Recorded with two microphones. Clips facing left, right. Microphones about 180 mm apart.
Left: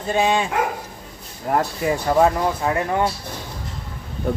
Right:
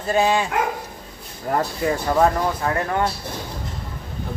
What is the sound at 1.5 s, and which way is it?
Speech, 10° left (ahead or behind).